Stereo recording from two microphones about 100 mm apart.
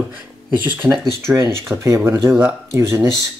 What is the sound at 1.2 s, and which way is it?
Speech, 30° right (ahead or behind).